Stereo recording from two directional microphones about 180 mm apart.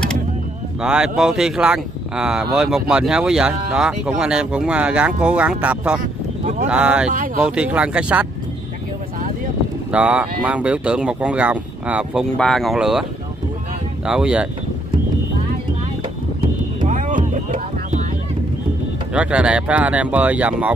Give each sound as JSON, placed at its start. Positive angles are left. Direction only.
{"t": 0.8, "sound": "speech", "side_deg": -5}
{"t": 9.8, "sound": "speech", "side_deg": -5}
{"t": 14.0, "sound": "speech", "side_deg": -5}
{"t": 16.8, "sound": "a sound", "side_deg": -45}
{"t": 19.1, "sound": "speech", "side_deg": -5}